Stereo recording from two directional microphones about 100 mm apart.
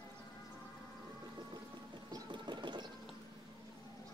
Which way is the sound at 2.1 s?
45° right (ahead or behind).